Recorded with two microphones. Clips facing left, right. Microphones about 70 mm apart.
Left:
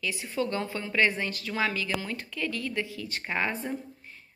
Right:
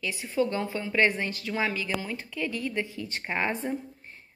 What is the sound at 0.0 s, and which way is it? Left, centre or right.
Speech, right.